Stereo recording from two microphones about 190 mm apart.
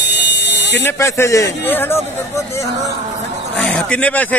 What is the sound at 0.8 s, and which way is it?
Speech, 15° left (ahead or behind).